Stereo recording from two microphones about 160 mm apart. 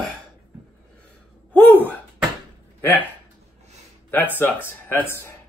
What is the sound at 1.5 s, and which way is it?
Gasp, 10° left (ahead or behind).